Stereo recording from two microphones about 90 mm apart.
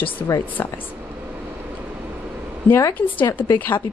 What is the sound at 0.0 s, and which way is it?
Speech, 20° left (ahead or behind).